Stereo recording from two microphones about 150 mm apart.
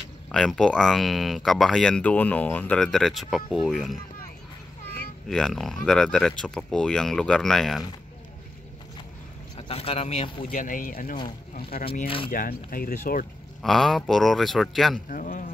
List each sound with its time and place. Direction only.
0.3 s speech: 5° left (ahead or behind)
5.3 s speech: centre (ahead or behind)
9.6 s speech: 40° left (ahead or behind)
10.5 s speech: 60° left (ahead or behind)
12.3 s speech: 65° left (ahead or behind)
13.6 s speech: centre (ahead or behind)
15.0 s speech: 65° left (ahead or behind)